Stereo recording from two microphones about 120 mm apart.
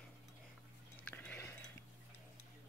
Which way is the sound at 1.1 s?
20° left (ahead or behind).